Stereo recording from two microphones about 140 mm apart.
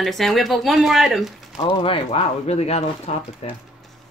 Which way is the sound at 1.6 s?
40° left (ahead or behind).